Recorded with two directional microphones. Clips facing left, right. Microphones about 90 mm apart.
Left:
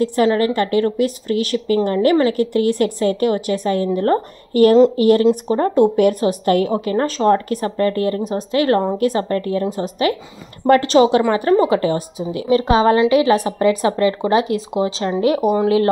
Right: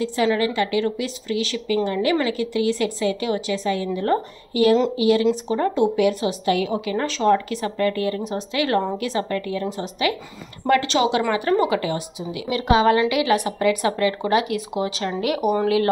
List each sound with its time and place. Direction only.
0.0 s a woman's voice: 45° left (ahead or behind); by 15.5 s 30° left (ahead or behind)